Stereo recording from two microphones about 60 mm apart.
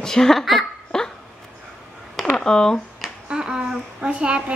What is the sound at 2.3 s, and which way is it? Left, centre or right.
Speech, centre.